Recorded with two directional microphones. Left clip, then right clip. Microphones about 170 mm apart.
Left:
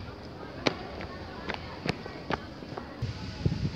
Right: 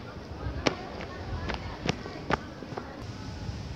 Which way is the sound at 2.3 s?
45° right (ahead or behind).